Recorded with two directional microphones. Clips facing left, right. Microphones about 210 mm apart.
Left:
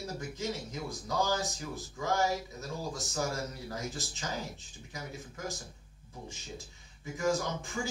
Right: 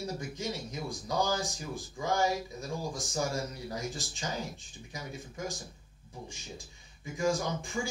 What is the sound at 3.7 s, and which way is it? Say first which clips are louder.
Speech: right 1 dB; 15° right (ahead or behind).